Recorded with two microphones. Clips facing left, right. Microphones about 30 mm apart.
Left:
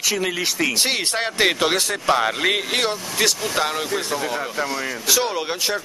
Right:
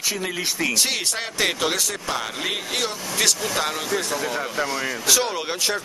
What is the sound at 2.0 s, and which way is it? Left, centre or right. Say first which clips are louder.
Speech: left 7 dB; left.